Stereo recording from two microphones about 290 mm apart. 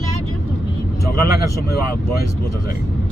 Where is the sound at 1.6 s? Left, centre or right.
Left.